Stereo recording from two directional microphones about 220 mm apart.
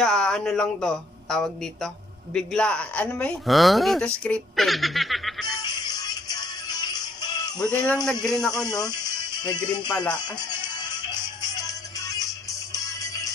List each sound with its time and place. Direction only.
0.0 s speech: 5° left (ahead or behind)
5.6 s music: 20° left (ahead or behind)
7.8 s speech: 5° left (ahead or behind)
8.5 s speech: 15° left (ahead or behind)
8.8 s music: 20° left (ahead or behind)
9.7 s speech: 5° left (ahead or behind)
10.2 s music: 20° left (ahead or behind)